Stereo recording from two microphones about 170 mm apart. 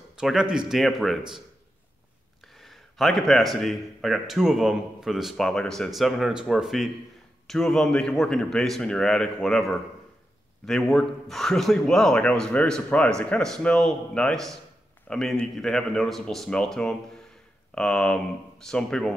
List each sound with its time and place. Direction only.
0.1 s speech: 5° right (ahead or behind)
2.4 s speech: centre (ahead or behind)